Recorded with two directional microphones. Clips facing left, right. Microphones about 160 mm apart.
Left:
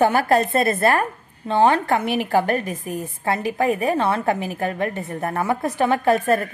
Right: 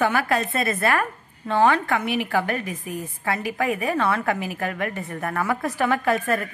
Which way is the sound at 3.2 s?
25° left (ahead or behind).